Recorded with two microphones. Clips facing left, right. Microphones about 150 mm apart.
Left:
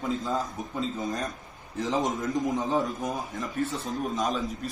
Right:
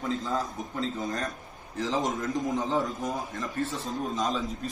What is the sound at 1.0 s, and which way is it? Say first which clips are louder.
Speech: left 1 dB; 20° left (ahead or behind).